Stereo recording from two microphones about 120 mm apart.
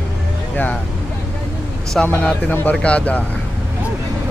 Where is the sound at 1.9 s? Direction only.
10° left (ahead or behind).